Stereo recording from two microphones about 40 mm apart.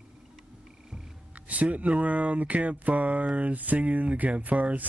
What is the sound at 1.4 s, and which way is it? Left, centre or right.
Speech, right.